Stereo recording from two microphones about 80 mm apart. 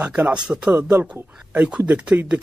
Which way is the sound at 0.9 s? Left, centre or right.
Right.